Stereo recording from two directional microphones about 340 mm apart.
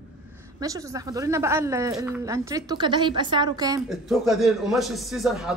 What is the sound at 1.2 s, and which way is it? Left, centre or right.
A woman's voice, centre.